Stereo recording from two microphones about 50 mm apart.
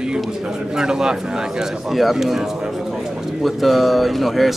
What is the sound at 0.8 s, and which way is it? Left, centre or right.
Speech, centre.